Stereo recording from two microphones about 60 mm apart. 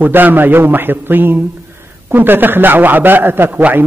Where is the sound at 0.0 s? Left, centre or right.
Right.